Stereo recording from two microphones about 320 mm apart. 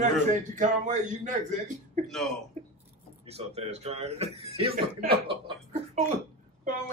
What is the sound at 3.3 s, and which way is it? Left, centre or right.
Speech, centre.